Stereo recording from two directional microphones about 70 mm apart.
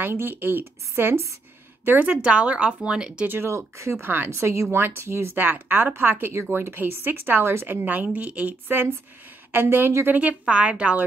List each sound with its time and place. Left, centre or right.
0.0 s a woman's voice: right; by 3.3 s centre
3.3 s speech: right
3.5 s speech: right
4.3 s a woman's voice: right; by 11.1 s centre